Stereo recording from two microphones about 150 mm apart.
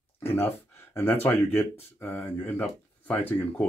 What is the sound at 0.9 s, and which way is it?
Speech, 15° left (ahead or behind).